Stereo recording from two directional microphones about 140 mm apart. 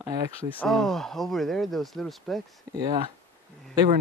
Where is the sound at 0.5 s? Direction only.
5° left (ahead or behind).